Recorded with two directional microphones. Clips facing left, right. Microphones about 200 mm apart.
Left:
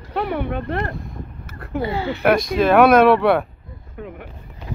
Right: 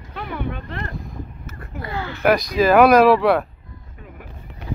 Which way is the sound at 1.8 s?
25° left (ahead or behind).